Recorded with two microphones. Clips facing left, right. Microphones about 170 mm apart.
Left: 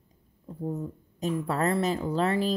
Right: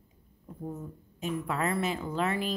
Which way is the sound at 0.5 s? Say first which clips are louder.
Left 5 dB; 30° left (ahead or behind).